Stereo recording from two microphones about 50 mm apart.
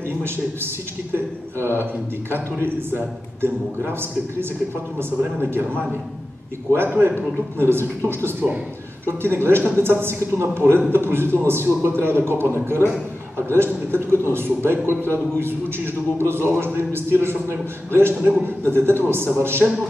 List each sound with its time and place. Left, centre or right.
2.3 s a man's voice: right
6.7 s a man's voice: right